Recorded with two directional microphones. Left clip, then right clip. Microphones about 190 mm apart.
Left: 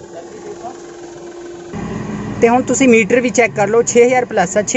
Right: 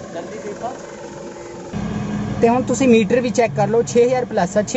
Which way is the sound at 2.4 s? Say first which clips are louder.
Left 4 dB; 20° left (ahead or behind).